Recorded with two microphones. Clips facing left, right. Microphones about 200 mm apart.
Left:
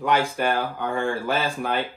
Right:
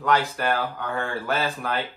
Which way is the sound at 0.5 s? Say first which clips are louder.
Left 2 dB; 25° left (ahead or behind).